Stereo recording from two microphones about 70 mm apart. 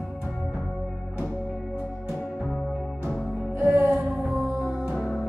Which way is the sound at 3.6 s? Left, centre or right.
Right.